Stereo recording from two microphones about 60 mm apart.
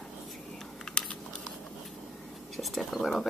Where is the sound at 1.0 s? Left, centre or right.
Centre.